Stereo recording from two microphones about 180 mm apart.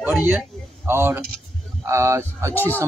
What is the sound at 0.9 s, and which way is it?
A man's voice, 15° right (ahead or behind).